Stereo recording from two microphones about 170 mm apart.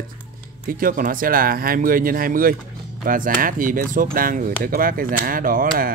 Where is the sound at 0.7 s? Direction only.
55° right (ahead or behind).